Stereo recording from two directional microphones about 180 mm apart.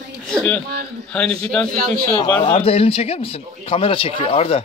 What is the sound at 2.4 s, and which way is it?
Speech, 30° left (ahead or behind).